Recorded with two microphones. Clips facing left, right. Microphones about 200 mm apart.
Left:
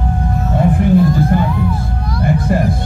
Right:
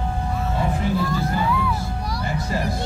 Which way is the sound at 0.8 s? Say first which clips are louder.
Left 10 dB; 55° left (ahead or behind).